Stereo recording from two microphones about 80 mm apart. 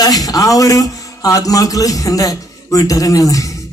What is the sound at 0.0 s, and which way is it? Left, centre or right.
A man's voice, left.